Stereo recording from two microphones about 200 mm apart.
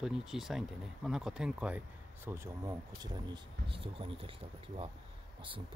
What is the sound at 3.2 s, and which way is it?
Speech, 25° right (ahead or behind).